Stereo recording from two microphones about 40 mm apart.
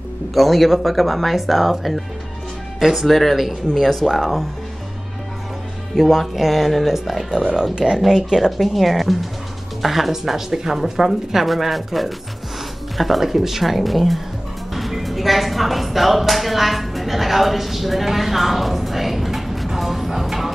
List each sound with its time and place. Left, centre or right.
0.3 s speech: centre
5.9 s speech: centre
14.7 s music: centre